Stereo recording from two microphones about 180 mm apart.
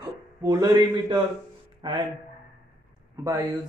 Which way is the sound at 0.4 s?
20° right (ahead or behind).